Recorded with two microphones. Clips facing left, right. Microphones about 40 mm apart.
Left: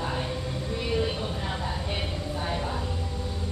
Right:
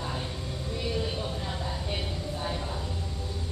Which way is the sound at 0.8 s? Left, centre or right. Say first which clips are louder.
Left 3 dB; left.